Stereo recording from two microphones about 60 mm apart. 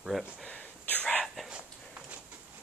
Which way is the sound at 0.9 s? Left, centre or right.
Left.